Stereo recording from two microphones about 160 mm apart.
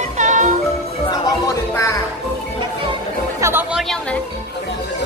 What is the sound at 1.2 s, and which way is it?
Music, 20° left (ahead or behind).